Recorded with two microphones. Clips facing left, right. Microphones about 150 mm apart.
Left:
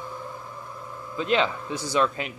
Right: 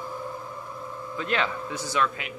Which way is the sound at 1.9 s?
30° left (ahead or behind).